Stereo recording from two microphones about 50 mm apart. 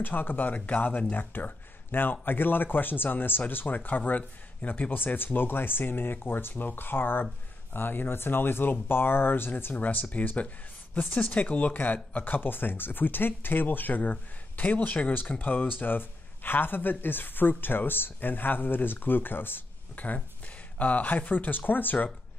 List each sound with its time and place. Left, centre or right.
0.0 s speech: left